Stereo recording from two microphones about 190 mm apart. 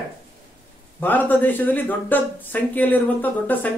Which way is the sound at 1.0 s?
10° left (ahead or behind).